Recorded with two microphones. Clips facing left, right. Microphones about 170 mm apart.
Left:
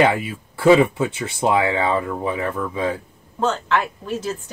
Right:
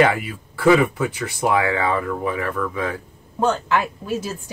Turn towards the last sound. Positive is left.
turn(degrees=-10)  # may be behind; listen again after turning